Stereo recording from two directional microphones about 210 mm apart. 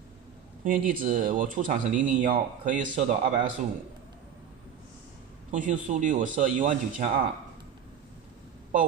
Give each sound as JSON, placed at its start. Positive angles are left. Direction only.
{"t": 0.7, "sound": "speech", "side_deg": -40}
{"t": 5.5, "sound": "speech", "side_deg": -35}